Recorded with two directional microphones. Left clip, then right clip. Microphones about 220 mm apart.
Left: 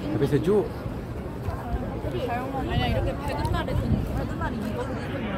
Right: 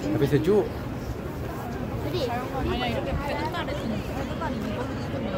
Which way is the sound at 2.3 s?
50° left (ahead or behind).